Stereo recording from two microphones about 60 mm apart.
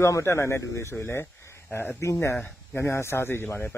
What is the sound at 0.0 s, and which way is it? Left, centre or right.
Speech, left.